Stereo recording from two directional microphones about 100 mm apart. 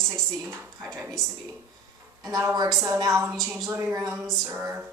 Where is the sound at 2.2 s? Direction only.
35° right (ahead or behind).